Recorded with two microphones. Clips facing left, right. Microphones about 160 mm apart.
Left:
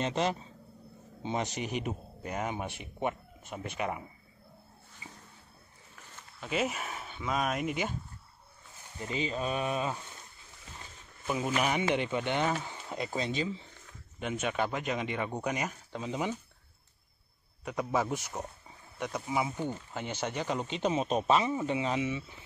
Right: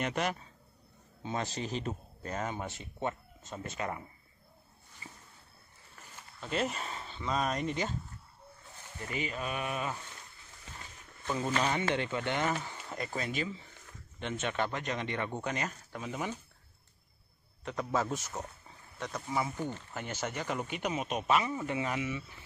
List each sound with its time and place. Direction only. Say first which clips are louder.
0.0 s speech: left 3 dB; 25° left (ahead or behind)
6.4 s speech: left 1 dB; 5° left (ahead or behind)
9.0 s speech: left 4 dB; 25° left (ahead or behind)
11.2 s speech: left 1 dB; 10° left (ahead or behind)
13.8 s speech: left 2 dB; 10° left (ahead or behind)
17.6 s speech: left 2 dB; 10° left (ahead or behind)